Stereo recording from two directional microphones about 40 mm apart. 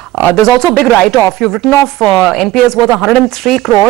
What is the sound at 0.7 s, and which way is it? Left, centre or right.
Speech, left.